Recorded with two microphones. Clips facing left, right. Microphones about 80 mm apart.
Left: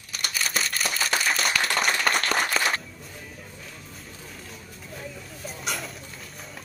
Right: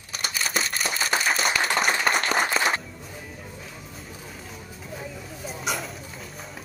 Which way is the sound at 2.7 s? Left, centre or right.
Centre.